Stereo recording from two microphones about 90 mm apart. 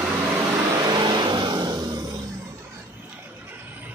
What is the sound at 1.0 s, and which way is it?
Vehicle, 55° right (ahead or behind).